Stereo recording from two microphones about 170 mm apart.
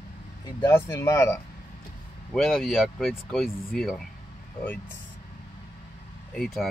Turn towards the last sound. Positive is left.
turn(degrees=0)  # may be behind; listen again after turning